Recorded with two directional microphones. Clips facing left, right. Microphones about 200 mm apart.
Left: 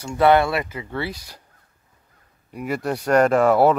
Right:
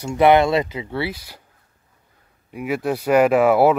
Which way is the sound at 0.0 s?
20° right (ahead or behind).